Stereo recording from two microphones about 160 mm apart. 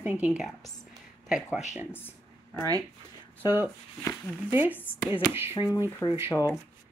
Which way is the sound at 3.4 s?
15° right (ahead or behind).